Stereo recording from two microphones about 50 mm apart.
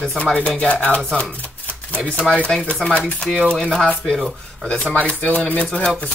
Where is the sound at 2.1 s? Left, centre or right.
Left.